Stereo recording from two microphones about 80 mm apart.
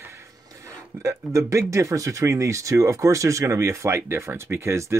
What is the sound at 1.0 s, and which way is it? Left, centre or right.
Speech, right.